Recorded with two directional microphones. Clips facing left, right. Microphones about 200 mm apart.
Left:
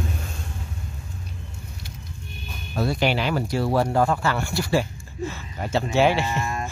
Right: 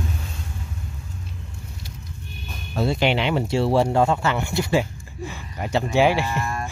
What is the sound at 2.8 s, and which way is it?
Speech, 25° right (ahead or behind).